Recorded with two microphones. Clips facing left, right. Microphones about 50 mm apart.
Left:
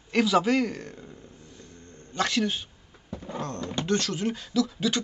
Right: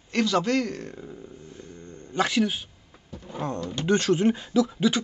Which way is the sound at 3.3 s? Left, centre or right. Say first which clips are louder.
Right 2 dB; centre.